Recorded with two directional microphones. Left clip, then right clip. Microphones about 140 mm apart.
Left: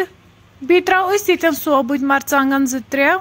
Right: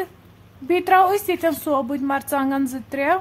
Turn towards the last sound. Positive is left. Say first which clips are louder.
# left 5 dB
turn(degrees=15)  # may be behind; listen again after turning